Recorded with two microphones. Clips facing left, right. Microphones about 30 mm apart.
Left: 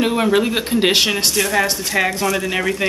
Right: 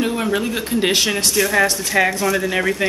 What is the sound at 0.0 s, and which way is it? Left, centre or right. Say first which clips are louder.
Speech: left 4 dB; left.